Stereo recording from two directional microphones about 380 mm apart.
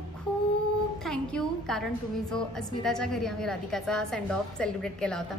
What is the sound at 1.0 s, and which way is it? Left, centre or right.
A woman's voice, centre.